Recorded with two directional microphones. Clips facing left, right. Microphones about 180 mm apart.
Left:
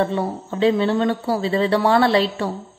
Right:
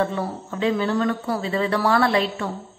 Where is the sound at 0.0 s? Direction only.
30° left (ahead or behind).